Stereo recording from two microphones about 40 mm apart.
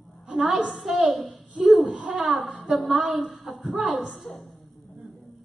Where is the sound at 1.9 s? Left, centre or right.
Right.